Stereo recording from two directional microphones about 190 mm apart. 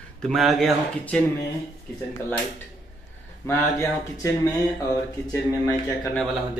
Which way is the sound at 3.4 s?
15° left (ahead or behind).